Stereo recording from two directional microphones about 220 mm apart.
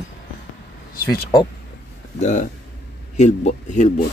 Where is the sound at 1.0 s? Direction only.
15° left (ahead or behind).